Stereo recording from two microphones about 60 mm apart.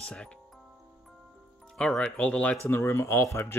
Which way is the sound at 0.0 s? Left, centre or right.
Centre.